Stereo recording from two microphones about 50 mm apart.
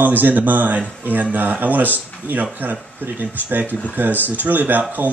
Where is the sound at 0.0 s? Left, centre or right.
Right.